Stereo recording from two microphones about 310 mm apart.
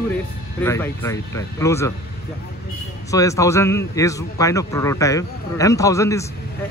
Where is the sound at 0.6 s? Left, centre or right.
Centre.